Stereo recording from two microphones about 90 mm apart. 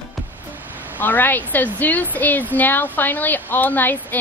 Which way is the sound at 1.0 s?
20° left (ahead or behind).